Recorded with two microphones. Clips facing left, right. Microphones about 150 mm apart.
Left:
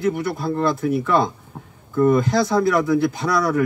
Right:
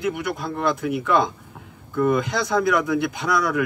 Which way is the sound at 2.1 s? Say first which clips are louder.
Left 4 dB; 35° left (ahead or behind).